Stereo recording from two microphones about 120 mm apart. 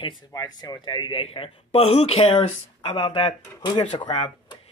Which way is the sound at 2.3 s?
50° left (ahead or behind).